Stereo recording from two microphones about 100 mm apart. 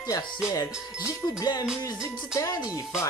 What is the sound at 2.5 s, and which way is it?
Speech, 40° left (ahead or behind).